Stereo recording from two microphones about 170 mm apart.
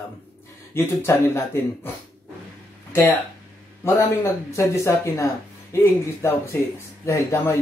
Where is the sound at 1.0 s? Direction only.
15° left (ahead or behind).